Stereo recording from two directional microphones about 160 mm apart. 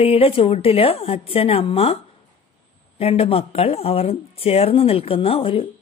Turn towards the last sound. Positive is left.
turn(degrees=35)  # may be behind; listen again after turning